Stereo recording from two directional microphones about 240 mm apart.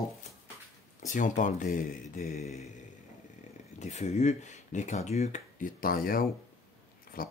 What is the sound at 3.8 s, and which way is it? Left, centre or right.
Speech, left.